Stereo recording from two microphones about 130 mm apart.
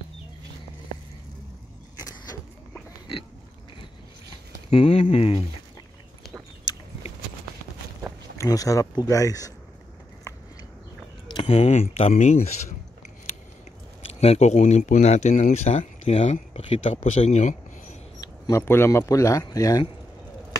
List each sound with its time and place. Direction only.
2.0 s vehicle: 30° left (ahead or behind)
4.6 s speech: 50° left (ahead or behind)
8.4 s speech: 25° left (ahead or behind)
11.2 s speech: 40° left (ahead or behind); by 12.7 s 60° left (ahead or behind)
14.0 s speech: 50° left (ahead or behind)
17.2 s a sound: 60° left (ahead or behind)
18.6 s speech: 20° left (ahead or behind)